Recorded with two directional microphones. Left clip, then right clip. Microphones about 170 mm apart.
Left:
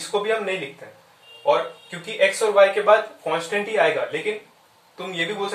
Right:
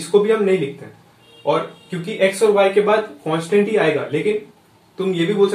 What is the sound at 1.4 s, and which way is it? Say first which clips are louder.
Speech: right 1 dB; 10° left (ahead or behind).